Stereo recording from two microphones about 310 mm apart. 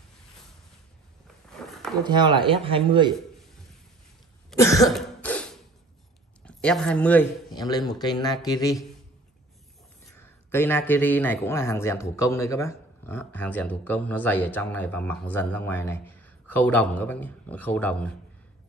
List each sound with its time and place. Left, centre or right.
1.2 s a sound: centre
2.0 s speech: centre
4.5 s cough: centre
6.4 s speech: centre
10.0 s speech: centre